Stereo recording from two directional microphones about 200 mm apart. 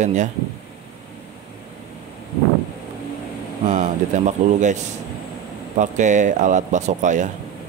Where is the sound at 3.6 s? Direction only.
35° right (ahead or behind).